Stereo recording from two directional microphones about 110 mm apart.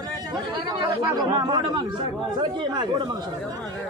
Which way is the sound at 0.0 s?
40° right (ahead or behind).